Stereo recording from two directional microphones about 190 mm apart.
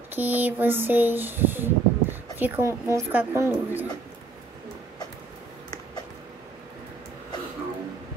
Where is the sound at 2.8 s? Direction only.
15° right (ahead or behind).